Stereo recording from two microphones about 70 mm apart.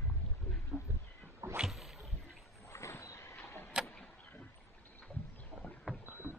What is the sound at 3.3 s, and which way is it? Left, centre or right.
Vehicle, left.